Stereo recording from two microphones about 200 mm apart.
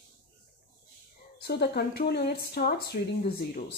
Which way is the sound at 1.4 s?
50° left (ahead or behind).